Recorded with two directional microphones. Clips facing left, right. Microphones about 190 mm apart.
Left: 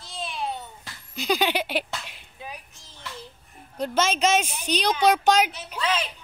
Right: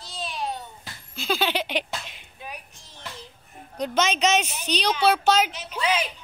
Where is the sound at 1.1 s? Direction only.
15° left (ahead or behind).